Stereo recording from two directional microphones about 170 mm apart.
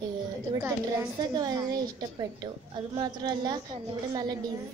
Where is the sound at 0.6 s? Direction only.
10° right (ahead or behind).